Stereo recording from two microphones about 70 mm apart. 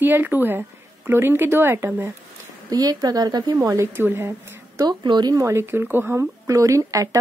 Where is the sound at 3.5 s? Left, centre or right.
Right.